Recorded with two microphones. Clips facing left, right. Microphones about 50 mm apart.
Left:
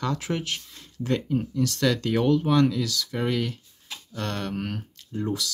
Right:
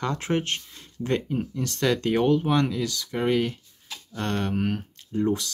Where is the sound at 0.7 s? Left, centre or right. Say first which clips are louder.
Even; right.